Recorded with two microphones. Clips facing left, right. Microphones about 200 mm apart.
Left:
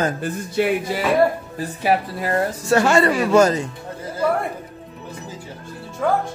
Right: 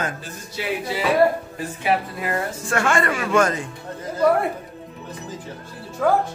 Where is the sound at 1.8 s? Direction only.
35° left (ahead or behind).